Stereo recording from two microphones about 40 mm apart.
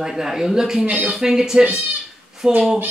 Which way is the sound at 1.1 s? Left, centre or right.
Centre.